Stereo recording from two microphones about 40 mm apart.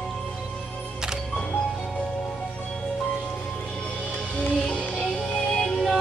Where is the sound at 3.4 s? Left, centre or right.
Left.